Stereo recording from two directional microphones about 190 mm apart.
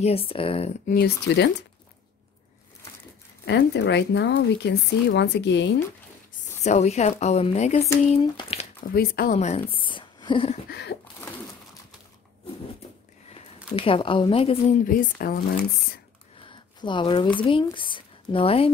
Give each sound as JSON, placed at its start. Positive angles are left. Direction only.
{"t": 0.0, "sound": "speech", "side_deg": 30}
{"t": 0.8, "sound": "speech", "side_deg": 55}
{"t": 3.4, "sound": "speech", "side_deg": 70}
{"t": 6.6, "sound": "speech", "side_deg": 35}
{"t": 8.9, "sound": "speech", "side_deg": 50}
{"t": 9.4, "sound": "a woman's voice", "side_deg": 35}
{"t": 10.7, "sound": "speech", "side_deg": 60}
{"t": 13.7, "sound": "speech", "side_deg": 30}
{"t": 14.9, "sound": "speech", "side_deg": 50}
{"t": 16.4, "sound": "speech", "side_deg": 25}